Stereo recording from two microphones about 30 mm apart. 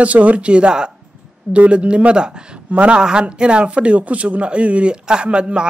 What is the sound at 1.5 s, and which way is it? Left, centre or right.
Speech, right.